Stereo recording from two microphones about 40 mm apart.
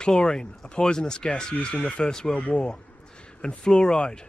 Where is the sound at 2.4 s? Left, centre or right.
Left.